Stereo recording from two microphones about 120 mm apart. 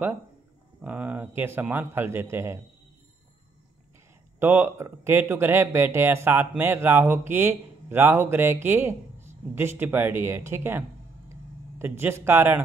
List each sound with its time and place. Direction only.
0.8 s a man's voice: 10° right (ahead or behind)
4.4 s speech: 20° right (ahead or behind)
11.8 s speech: 20° right (ahead or behind)